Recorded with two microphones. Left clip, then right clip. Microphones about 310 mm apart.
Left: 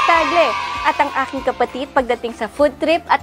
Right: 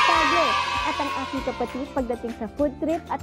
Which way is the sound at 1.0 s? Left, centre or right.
Centre.